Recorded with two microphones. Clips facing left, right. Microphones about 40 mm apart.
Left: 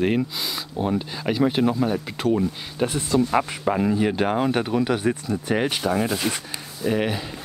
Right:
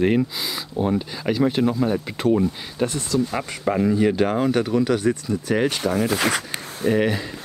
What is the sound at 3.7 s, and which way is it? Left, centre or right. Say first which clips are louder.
Speech: right 5 dB; centre.